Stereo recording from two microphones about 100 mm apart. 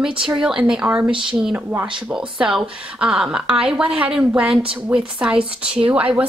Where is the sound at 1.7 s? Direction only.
20° right (ahead or behind).